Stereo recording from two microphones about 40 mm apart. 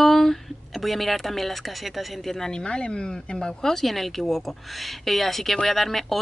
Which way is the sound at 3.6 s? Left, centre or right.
Centre.